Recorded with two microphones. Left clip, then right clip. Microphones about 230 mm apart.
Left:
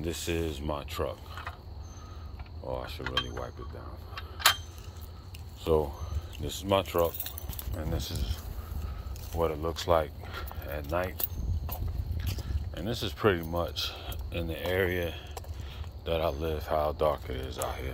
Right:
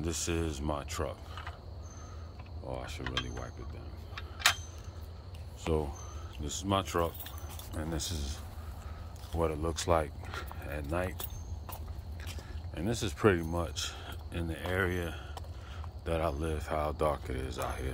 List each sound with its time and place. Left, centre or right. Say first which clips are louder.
0.0 s speech: left 2 dB; centre
2.7 s speech: left 5 dB; centre
6.4 s speech: left 5 dB; centre
12.7 s speech: left 1 dB; right